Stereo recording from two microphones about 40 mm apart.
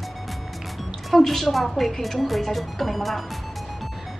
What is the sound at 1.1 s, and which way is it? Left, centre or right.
Speech, centre.